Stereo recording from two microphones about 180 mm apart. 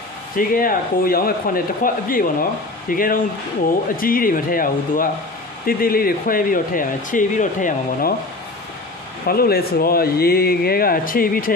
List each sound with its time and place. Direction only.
0.4 s speech: 50° left (ahead or behind)
9.3 s speech: 55° left (ahead or behind)